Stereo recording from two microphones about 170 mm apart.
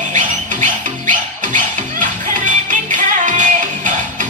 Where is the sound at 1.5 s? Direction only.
50° right (ahead or behind).